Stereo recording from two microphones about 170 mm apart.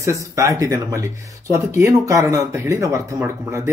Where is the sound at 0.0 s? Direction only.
20° right (ahead or behind).